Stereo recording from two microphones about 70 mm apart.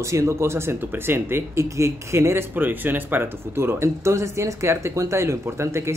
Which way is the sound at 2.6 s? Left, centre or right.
Right.